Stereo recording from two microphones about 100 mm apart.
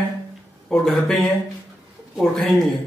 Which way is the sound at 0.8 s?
5° left (ahead or behind).